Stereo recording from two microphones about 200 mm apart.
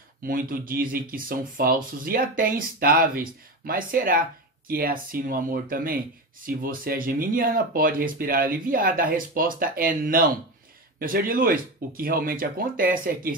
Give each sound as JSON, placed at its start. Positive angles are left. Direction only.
{"t": 0.2, "sound": "speech", "side_deg": -45}